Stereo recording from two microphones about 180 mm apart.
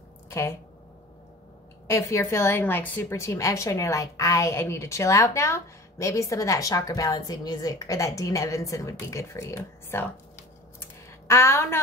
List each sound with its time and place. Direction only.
0.3 s speech: 15° left (ahead or behind)
1.9 s a woman's voice: 15° left (ahead or behind)
11.2 s a woman's voice: 15° left (ahead or behind)